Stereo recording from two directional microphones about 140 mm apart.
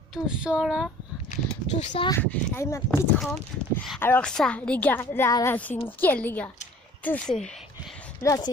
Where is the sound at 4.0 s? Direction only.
15° left (ahead or behind).